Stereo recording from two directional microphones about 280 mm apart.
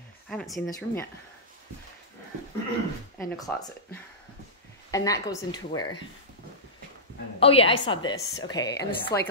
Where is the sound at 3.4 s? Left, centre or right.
Centre.